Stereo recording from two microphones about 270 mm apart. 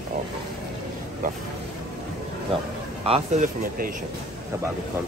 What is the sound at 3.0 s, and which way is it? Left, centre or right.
Speech, right.